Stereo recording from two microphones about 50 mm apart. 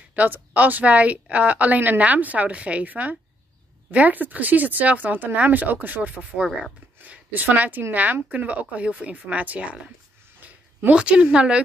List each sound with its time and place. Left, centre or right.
0.1 s a woman's voice: right
10.4 s a sound: right
10.9 s speech: right